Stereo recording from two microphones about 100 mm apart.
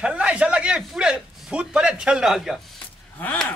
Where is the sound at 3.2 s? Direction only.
15° left (ahead or behind).